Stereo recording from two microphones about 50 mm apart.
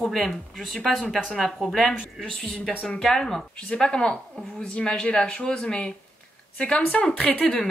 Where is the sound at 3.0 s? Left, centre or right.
Centre.